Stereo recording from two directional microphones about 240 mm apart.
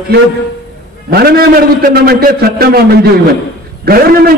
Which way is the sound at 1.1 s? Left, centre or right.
Right.